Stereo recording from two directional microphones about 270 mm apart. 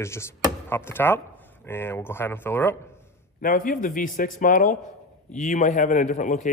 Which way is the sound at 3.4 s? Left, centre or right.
Left.